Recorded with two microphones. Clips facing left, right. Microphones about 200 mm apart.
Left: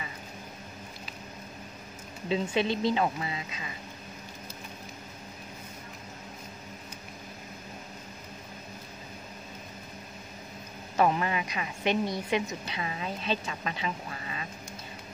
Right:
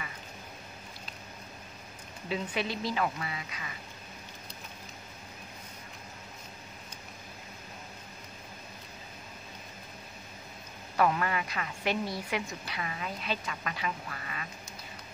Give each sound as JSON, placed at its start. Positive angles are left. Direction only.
{"t": 2.2, "sound": "a woman's voice", "side_deg": 25}
{"t": 11.0, "sound": "a woman's voice", "side_deg": 20}